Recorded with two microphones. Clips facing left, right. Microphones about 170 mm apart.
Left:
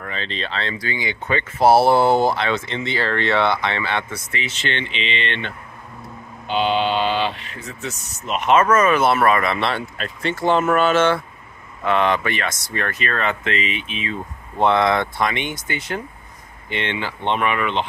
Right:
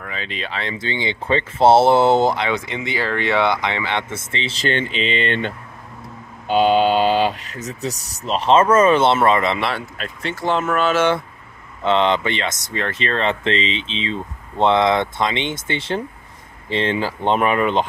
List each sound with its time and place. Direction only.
0.0 s speech: 10° right (ahead or behind)
9.6 s speech: 5° right (ahead or behind)
11.8 s speech: 25° right (ahead or behind); by 17.8 s 40° right (ahead or behind)